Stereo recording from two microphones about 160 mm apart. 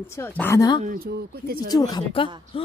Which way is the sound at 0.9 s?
70° right (ahead or behind).